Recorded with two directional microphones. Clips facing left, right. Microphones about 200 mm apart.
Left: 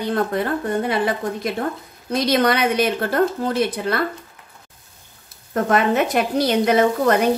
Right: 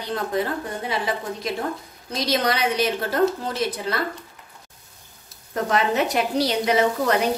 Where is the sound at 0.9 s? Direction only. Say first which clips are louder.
Left 5 dB; 55° left (ahead or behind).